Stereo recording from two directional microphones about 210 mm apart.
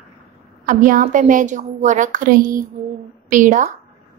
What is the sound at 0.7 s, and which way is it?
Speech, 40° right (ahead or behind).